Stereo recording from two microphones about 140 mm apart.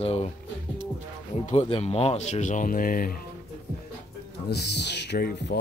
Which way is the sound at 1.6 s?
40° left (ahead or behind).